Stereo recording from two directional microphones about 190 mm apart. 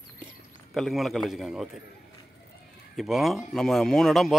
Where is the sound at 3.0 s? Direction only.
Centre (ahead or behind).